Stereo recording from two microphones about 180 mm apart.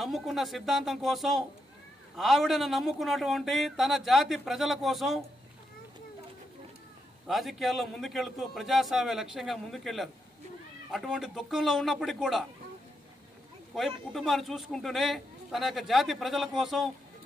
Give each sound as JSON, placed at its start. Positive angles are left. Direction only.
{"t": 0.0, "sound": "a man's voice", "side_deg": 0}
{"t": 7.2, "sound": "a man's voice", "side_deg": 0}
{"t": 13.7, "sound": "a man's voice", "side_deg": 0}